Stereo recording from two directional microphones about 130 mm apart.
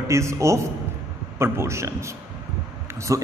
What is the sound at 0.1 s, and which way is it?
A man's voice, 20° right (ahead or behind).